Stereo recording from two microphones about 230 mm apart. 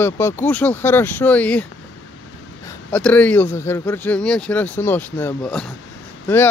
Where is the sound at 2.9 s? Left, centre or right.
Centre.